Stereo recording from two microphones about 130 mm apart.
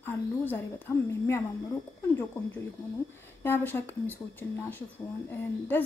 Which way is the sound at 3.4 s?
15° left (ahead or behind).